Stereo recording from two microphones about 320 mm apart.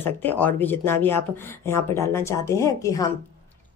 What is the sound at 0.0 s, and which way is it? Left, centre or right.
Speech, centre.